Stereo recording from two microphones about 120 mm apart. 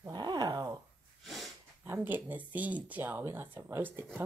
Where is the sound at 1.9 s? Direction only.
15° right (ahead or behind).